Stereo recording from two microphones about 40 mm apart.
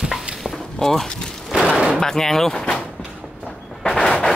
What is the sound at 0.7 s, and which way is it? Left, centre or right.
Speech, centre.